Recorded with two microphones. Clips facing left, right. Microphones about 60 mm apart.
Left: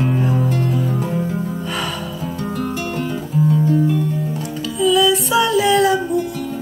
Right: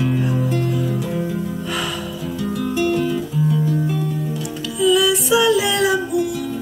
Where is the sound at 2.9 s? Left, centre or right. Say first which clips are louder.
Right 4 dB; left.